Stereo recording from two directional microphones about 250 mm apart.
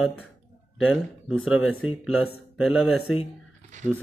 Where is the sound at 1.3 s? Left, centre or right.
Left.